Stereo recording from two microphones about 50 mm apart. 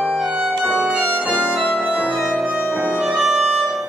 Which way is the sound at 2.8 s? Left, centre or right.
Right.